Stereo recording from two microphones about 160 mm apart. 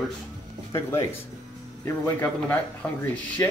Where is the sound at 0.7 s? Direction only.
15° left (ahead or behind).